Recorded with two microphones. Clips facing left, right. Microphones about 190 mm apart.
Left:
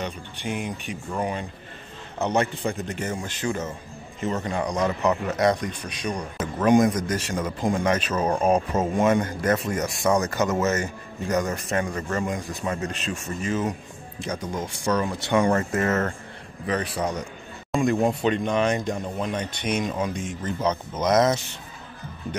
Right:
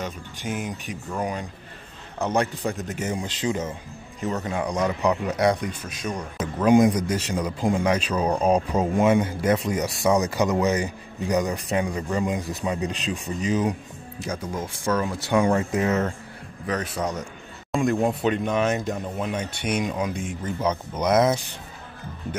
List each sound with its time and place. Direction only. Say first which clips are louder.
0.0 s a man's voice: left 1 dB; centre (ahead or behind); by 3.7 s 20° right (ahead or behind)
4.2 s a man's voice: even; centre (ahead or behind)
8.1 s a man's voice: even; 5° left (ahead or behind)
8.7 s a man's voice: right 1 dB; 10° right (ahead or behind)